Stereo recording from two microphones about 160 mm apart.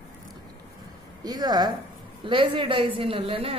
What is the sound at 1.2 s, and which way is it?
Speech, 25° right (ahead or behind).